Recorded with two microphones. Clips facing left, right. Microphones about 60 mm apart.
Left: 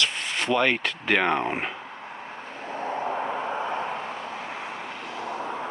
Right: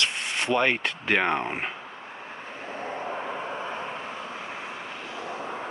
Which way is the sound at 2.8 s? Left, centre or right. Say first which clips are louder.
Left 5 dB; left.